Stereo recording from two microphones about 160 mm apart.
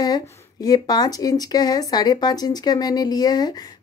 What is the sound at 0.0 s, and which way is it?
A woman's voice, 25° left (ahead or behind).